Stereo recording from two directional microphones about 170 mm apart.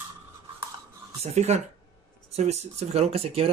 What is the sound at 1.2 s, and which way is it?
Speech, 40° right (ahead or behind).